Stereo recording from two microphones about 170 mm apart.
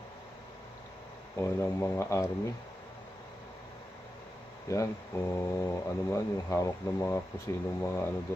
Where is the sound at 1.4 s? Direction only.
15° left (ahead or behind).